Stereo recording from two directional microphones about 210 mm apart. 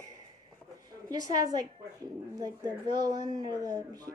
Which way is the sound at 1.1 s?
20° right (ahead or behind).